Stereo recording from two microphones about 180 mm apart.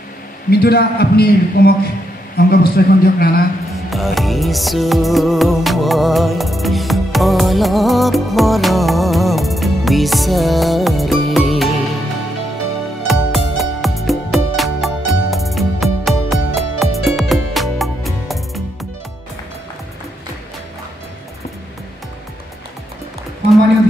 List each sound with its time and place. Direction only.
0.5 s a man's voice: 60° left (ahead or behind)
3.9 s music: centre (ahead or behind)
13.0 s music: centre (ahead or behind)